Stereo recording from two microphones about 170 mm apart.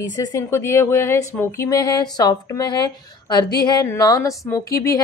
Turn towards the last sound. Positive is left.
turn(degrees=20)  # may be behind; listen again after turning